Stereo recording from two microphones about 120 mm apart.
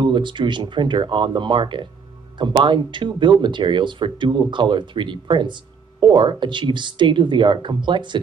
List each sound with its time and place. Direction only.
0.0 s speech: 40° right (ahead or behind)